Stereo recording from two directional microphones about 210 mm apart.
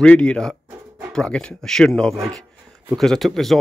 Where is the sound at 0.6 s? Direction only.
15° right (ahead or behind).